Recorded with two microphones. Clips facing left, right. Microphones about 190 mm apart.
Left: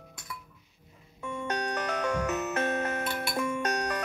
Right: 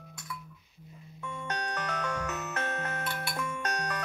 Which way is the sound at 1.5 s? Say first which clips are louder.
Left 4 dB; 10° left (ahead or behind).